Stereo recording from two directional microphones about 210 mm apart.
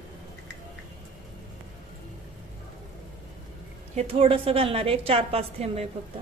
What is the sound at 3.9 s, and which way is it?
A woman's voice, 25° right (ahead or behind).